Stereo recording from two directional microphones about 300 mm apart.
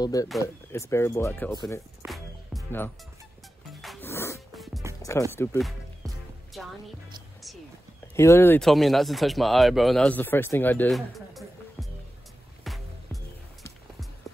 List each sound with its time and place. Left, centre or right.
0.0 s speech: centre
1.7 s music: centre
5.3 s speech: centre
8.2 s speech: centre
12.6 s music: centre